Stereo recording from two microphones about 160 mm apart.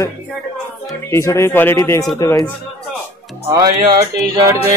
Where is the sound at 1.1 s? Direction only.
15° left (ahead or behind).